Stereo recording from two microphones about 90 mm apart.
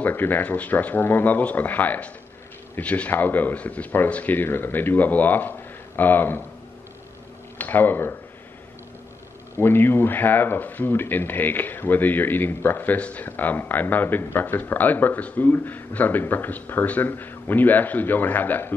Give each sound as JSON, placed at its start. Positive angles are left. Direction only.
{"t": 0.0, "sound": "speech", "side_deg": 20}
{"t": 7.5, "sound": "speech", "side_deg": 20}
{"t": 9.6, "sound": "speech", "side_deg": 25}